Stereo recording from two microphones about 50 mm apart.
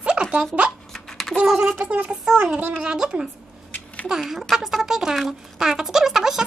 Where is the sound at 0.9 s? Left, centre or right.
Centre.